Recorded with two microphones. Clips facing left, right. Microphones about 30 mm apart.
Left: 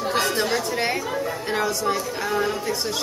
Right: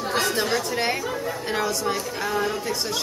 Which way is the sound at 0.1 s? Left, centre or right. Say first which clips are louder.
Even; centre.